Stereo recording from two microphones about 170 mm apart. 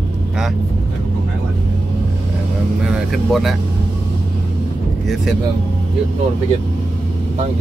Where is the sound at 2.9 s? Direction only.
Centre (ahead or behind).